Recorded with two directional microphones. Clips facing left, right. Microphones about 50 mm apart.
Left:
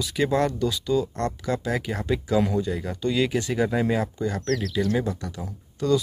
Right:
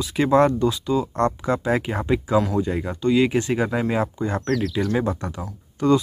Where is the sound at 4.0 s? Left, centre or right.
Right.